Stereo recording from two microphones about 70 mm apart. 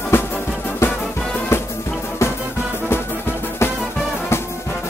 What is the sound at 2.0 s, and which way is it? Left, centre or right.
Music, left.